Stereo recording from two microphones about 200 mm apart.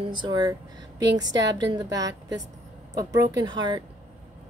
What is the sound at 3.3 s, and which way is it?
Speech, 20° right (ahead or behind).